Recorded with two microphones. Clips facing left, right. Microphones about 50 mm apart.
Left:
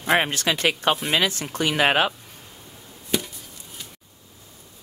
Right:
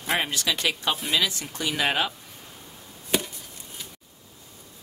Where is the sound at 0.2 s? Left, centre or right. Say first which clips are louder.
Left 4 dB; left.